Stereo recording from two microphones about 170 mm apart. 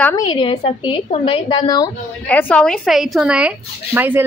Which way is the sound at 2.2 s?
10° left (ahead or behind).